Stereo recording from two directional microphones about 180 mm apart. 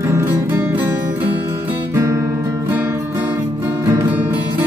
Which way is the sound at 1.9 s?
15° right (ahead or behind).